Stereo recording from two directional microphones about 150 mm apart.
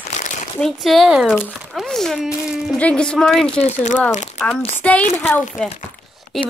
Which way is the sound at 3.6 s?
50° left (ahead or behind).